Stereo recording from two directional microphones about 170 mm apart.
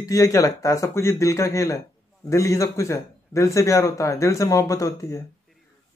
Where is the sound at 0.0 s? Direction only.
20° left (ahead or behind).